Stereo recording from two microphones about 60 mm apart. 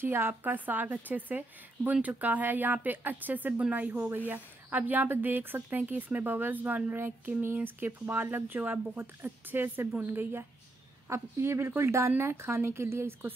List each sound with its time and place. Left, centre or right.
0.0 s speech: right
3.9 s speech: right
4.3 s speech: right
11.1 s speech: right